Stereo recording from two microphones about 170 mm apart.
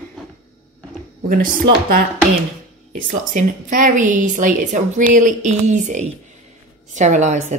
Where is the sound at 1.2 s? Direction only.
55° right (ahead or behind).